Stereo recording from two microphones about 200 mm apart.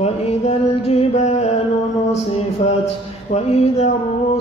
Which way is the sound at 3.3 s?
30° left (ahead or behind).